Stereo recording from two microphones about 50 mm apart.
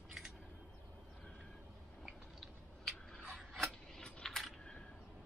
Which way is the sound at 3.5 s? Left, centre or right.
Centre.